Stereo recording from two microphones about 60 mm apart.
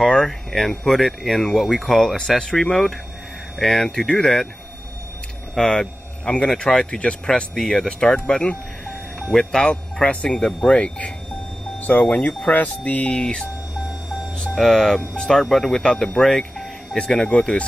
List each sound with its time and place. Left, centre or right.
0.1 s speech: centre
5.5 s speech: centre
7.5 s speech: centre